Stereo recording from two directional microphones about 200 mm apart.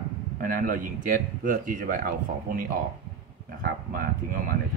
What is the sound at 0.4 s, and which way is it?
A man's voice, 45° right (ahead or behind).